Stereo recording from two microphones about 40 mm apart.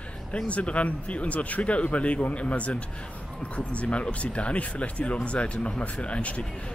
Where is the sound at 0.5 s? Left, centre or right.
Left.